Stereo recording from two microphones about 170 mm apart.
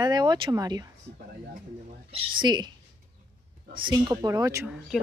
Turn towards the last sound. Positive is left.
turn(degrees=0)  # may be behind; listen again after turning